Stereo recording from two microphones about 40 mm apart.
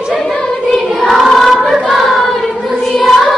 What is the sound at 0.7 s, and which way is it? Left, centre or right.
Child singing, centre.